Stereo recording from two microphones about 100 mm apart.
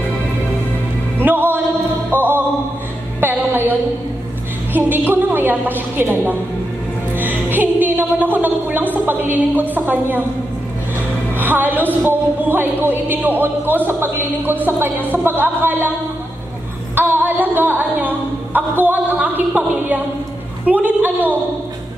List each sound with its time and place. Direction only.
1.2 s music: 20° right (ahead or behind)
3.2 s a sound: 20° right (ahead or behind)
4.7 s a woman's voice: 20° right (ahead or behind)
11.3 s a woman's voice: 20° right (ahead or behind)
16.9 s a woman's voice: 20° right (ahead or behind)